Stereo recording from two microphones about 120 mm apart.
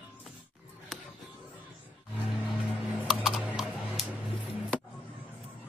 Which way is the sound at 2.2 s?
5° right (ahead or behind).